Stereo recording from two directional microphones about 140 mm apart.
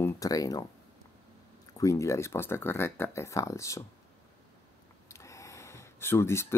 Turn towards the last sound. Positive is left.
turn(degrees=20)  # may be behind; listen again after turning